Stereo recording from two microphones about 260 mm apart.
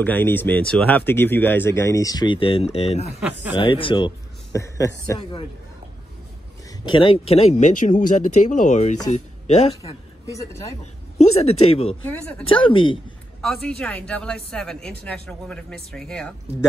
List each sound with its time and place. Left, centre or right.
0.0 s speech: centre; by 3.2 s left
3.2 s speech: centre
3.5 s speech: centre
6.9 s speech: left
10.3 s speech: centre
10.8 s speech: left
12.1 s speech: centre
12.4 s speech: centre
13.4 s speech: centre